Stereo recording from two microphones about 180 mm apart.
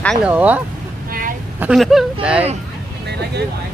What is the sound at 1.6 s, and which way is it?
Speech, centre (ahead or behind).